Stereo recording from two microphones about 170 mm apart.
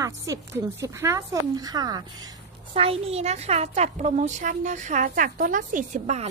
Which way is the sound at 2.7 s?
35° right (ahead or behind).